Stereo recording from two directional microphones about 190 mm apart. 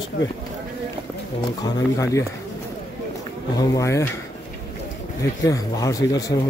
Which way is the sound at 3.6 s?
15° left (ahead or behind).